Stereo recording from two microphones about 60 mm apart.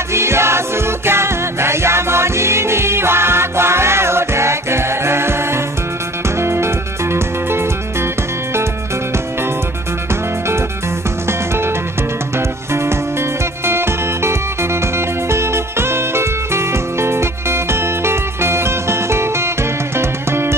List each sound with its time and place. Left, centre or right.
0.1 s music: right
11.2 s music: right